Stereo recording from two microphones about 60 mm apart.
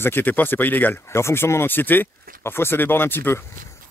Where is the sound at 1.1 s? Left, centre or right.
Left.